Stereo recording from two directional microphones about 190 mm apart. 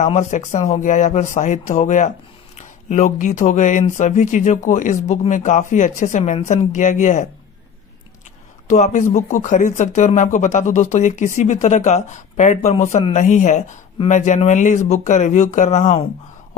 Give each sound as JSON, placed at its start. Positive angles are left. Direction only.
{"t": 0.0, "sound": "speech", "side_deg": 40}
{"t": 8.6, "sound": "speech", "side_deg": 40}